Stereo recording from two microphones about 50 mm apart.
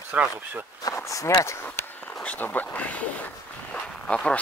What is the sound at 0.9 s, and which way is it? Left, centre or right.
Speech, left.